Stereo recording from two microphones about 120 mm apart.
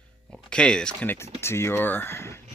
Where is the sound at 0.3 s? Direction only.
5° left (ahead or behind).